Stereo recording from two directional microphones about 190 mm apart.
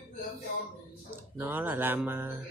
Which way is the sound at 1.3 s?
10° right (ahead or behind).